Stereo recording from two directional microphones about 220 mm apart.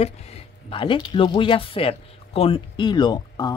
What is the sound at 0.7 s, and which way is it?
Speech, 25° left (ahead or behind).